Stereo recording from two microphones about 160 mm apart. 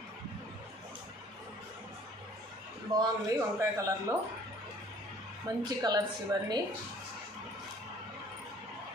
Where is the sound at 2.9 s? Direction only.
20° right (ahead or behind).